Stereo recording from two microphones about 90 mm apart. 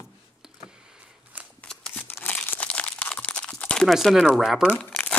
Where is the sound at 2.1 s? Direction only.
20° left (ahead or behind).